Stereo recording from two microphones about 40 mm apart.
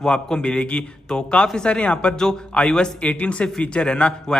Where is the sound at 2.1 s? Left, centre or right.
Centre.